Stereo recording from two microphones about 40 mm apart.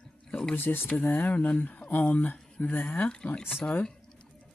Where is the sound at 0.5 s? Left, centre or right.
Left.